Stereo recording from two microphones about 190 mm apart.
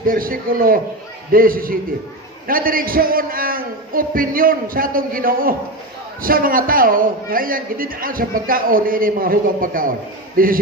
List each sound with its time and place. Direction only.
0.0 s a man's voice: 50° right (ahead or behind)